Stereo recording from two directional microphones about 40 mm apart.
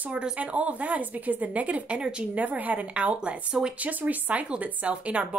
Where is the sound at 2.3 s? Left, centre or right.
Right.